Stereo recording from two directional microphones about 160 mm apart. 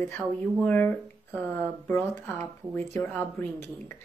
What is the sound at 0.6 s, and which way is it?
Speech, 10° left (ahead or behind).